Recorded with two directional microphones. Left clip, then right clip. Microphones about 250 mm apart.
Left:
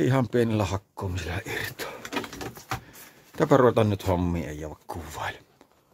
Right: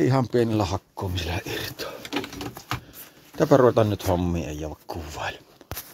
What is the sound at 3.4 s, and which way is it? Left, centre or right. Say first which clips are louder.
Speech: right 2 dB; centre.